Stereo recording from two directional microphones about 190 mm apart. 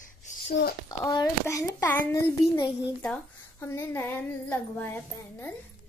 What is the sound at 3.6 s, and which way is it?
A child's voice, 15° left (ahead or behind).